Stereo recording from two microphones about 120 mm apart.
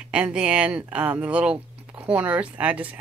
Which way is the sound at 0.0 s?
10° right (ahead or behind).